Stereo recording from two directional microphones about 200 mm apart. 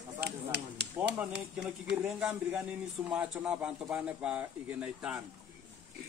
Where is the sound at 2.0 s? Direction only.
5° right (ahead or behind).